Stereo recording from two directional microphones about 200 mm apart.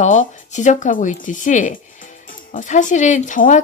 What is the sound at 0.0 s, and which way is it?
Speech, 40° left (ahead or behind).